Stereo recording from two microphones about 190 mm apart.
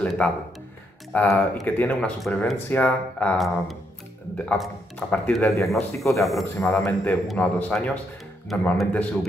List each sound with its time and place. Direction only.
0.0 s speech: 5° left (ahead or behind)
4.9 s speech: 5° left (ahead or behind)